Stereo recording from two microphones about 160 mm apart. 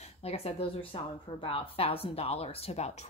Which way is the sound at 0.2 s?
40° left (ahead or behind).